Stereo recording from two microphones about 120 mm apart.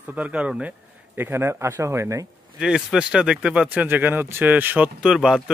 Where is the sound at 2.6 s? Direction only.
5° right (ahead or behind).